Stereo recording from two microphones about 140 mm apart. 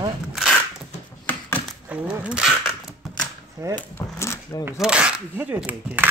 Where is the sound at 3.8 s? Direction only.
20° left (ahead or behind).